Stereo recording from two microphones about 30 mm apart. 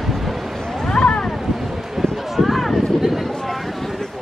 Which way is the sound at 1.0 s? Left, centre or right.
Left.